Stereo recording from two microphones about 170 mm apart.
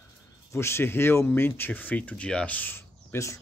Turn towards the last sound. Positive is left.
turn(degrees=15)  # may be behind; listen again after turning